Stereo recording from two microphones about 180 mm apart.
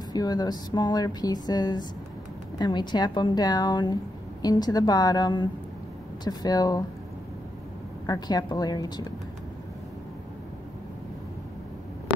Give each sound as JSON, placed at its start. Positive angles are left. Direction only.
{"t": 0.1, "sound": "speech", "side_deg": 20}
{"t": 8.1, "sound": "speech", "side_deg": 20}